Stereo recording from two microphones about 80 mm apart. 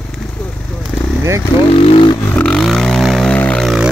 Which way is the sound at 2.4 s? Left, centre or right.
Centre.